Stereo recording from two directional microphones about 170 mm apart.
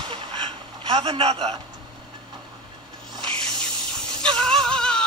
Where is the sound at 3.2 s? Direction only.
5° left (ahead or behind).